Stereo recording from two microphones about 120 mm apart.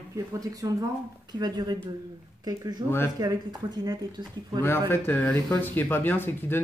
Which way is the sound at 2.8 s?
20° left (ahead or behind).